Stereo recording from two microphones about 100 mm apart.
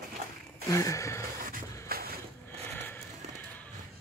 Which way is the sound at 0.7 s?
30° left (ahead or behind).